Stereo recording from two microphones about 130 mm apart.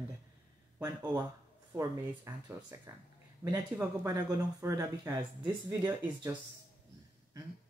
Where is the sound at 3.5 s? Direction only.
25° right (ahead or behind).